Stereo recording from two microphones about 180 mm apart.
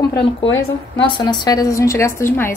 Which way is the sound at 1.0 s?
25° left (ahead or behind).